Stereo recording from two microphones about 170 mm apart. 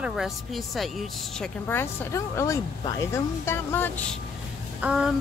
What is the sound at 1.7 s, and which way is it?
A woman's voice, 15° left (ahead or behind).